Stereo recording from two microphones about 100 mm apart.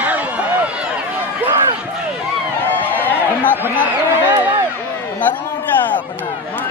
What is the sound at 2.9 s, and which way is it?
Chatter, 20° left (ahead or behind).